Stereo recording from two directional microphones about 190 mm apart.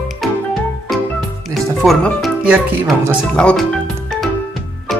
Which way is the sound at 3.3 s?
5° left (ahead or behind).